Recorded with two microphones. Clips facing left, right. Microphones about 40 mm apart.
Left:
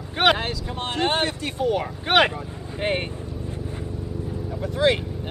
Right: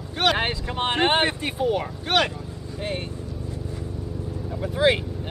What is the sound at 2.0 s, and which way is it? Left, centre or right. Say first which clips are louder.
Speech: left 5 dB; left.